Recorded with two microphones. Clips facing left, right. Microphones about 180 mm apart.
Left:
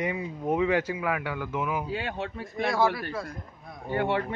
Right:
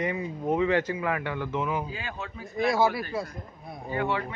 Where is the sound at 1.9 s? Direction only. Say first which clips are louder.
Left 5 dB; 65° left (ahead or behind).